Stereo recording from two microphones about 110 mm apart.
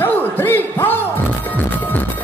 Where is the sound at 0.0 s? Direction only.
20° left (ahead or behind).